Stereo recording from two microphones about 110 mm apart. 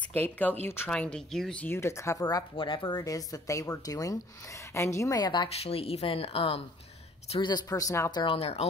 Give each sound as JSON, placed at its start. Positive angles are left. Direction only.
{"t": 0.1, "sound": "speech", "side_deg": 15}
{"t": 1.7, "sound": "speech", "side_deg": 25}
{"t": 2.5, "sound": "speech", "side_deg": 45}
{"t": 5.6, "sound": "speech", "side_deg": 60}
{"t": 7.4, "sound": "speech", "side_deg": 35}
{"t": 8.1, "sound": "speech", "side_deg": 40}
{"t": 8.4, "sound": "speech", "side_deg": 65}